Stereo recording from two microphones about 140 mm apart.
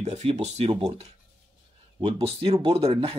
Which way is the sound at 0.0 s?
50° right (ahead or behind).